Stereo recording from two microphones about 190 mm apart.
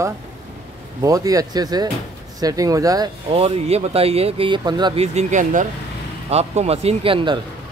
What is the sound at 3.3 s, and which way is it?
Speech, 30° right (ahead or behind).